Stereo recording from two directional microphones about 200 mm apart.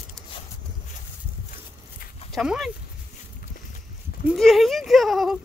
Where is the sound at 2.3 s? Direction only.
Centre (ahead or behind).